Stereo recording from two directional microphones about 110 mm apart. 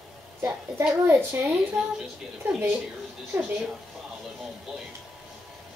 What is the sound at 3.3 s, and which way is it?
Speech, 5° right (ahead or behind).